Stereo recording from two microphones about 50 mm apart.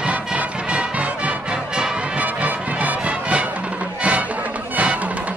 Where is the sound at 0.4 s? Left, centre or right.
Right.